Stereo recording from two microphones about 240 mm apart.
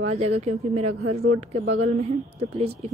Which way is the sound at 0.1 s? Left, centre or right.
Right.